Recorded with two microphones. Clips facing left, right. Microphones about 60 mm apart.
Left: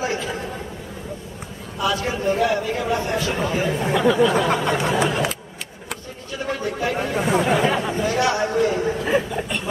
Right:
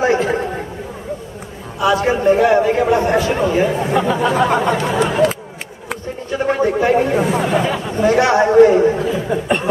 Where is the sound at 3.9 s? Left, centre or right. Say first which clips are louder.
Left 1 dB; right.